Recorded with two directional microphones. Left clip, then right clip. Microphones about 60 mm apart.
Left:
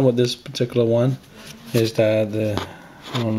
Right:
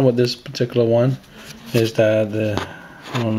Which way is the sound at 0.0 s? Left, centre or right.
Centre.